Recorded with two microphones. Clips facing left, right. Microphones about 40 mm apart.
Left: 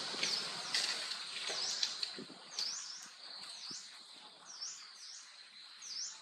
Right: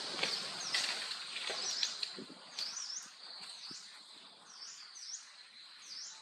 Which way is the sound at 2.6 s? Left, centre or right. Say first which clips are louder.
Left 1 dB; right.